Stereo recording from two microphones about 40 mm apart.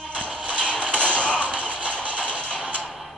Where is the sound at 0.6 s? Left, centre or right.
Left.